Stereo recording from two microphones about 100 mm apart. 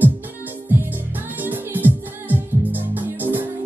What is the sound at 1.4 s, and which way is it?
Music, 20° right (ahead or behind).